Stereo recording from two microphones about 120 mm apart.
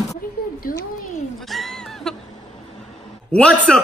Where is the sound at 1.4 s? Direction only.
Centre (ahead or behind).